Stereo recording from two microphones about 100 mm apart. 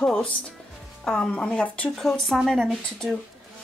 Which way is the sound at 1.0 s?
10° left (ahead or behind).